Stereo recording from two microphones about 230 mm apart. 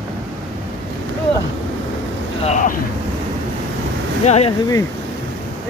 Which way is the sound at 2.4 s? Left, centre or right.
Left.